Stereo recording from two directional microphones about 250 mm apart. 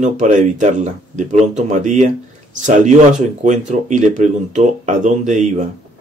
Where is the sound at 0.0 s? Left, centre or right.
Right.